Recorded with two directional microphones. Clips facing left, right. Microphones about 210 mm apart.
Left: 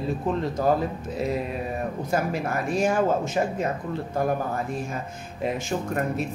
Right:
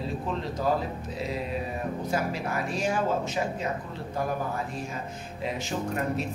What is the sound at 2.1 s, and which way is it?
Speech, 50° left (ahead or behind).